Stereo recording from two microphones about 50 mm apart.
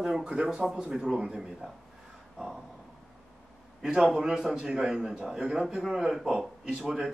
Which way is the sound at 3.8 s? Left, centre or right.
Centre.